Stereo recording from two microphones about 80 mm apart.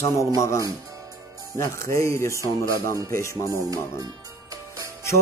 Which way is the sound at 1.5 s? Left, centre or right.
Left.